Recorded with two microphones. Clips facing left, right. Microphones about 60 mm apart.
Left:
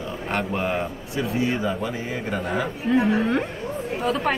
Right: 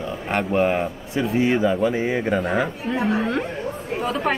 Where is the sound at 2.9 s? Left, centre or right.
Centre.